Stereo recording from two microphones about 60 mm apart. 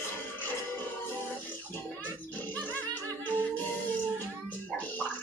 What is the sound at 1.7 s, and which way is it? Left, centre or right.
Music, left.